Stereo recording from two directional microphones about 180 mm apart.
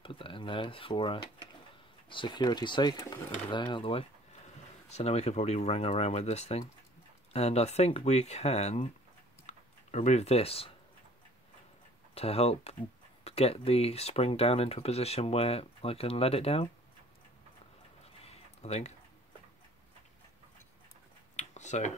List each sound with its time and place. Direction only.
0.0 s speech: 30° left (ahead or behind)
12.1 s speech: 35° left (ahead or behind)
18.2 s a sound: 35° left (ahead or behind)
21.4 s tick-tock: 40° left (ahead or behind)